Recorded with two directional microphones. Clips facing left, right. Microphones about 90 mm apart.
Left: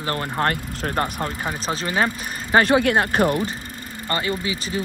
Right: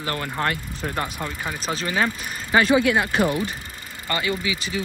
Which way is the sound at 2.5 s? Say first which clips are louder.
Left 1 dB; 50° left (ahead or behind).